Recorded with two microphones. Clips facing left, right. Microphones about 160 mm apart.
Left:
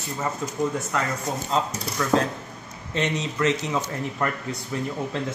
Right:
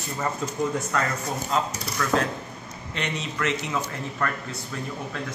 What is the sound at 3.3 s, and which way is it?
Speech, 20° left (ahead or behind).